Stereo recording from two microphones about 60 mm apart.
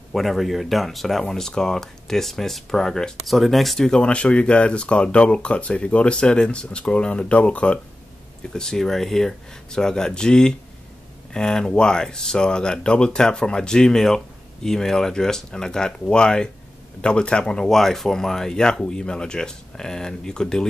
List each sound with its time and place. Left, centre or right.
0.1 s speech: centre
8.5 s speech: centre